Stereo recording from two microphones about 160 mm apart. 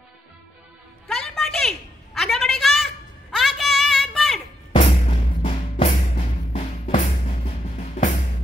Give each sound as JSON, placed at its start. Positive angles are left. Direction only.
{"t": 1.0, "sound": "music", "side_deg": 5}
{"t": 2.1, "sound": "a sound", "side_deg": 0}
{"t": 4.7, "sound": "music", "side_deg": 40}
{"t": 6.9, "sound": "music", "side_deg": 50}